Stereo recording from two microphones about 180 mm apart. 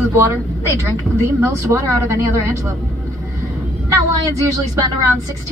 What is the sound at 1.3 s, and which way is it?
A woman's voice, 15° right (ahead or behind).